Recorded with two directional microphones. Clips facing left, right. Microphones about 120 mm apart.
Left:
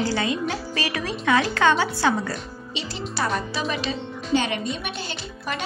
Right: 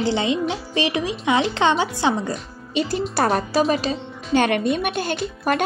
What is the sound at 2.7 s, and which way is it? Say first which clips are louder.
A woman's voice: right 10 dB; 50° right (ahead or behind).